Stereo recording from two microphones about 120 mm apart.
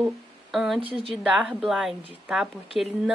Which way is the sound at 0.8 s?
50° right (ahead or behind).